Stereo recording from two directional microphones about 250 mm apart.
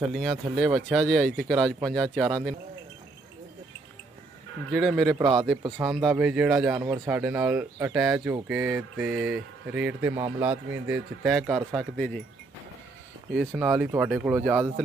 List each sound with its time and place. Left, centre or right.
0.1 s speech: centre
4.7 s speech: centre
5.1 s speech: centre
5.8 s speech: centre
13.4 s speech: centre